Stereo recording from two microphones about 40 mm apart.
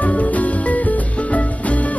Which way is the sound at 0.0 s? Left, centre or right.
Left.